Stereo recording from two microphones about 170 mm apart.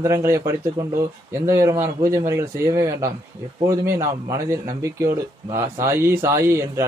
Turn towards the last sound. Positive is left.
turn(degrees=-15)  # may be behind; listen again after turning